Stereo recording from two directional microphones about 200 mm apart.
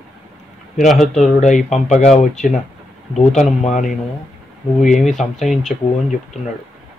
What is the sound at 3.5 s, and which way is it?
Speech, 35° left (ahead or behind).